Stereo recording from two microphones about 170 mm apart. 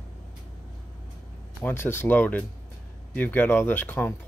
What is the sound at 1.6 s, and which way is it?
Speech, 15° left (ahead or behind).